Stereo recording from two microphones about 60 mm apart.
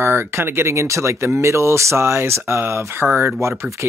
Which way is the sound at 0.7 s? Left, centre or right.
Right.